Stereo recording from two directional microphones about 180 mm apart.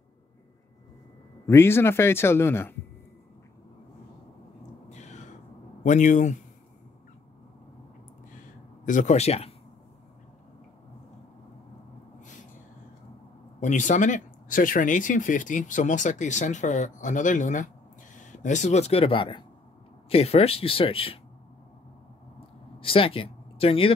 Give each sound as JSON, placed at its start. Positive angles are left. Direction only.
{"t": 1.5, "sound": "speech", "side_deg": 15}
{"t": 4.8, "sound": "a sound", "side_deg": 40}
{"t": 5.9, "sound": "speech", "side_deg": 45}
{"t": 8.8, "sound": "speech", "side_deg": 45}
{"t": 12.2, "sound": "gasp", "side_deg": 45}
{"t": 13.6, "sound": "speech", "side_deg": 45}
{"t": 22.8, "sound": "speech", "side_deg": 30}